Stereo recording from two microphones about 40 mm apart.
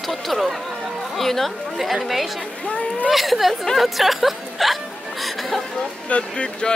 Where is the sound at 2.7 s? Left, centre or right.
Left.